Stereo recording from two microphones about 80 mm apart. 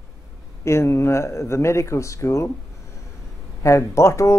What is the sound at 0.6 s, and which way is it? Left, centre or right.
A woman's voice, left.